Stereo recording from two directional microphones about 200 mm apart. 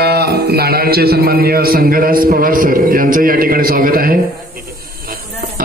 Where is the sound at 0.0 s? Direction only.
50° right (ahead or behind).